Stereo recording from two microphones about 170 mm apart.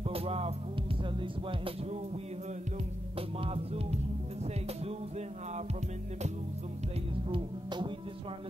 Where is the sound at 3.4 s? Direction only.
35° right (ahead or behind).